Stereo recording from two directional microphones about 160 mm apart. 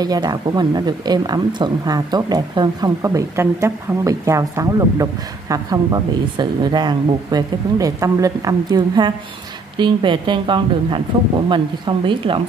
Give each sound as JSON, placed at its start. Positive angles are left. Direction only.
{"t": 0.0, "sound": "a woman's voice", "side_deg": -25}